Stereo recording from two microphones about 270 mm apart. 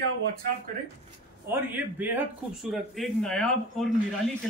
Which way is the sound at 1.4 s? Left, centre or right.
Centre.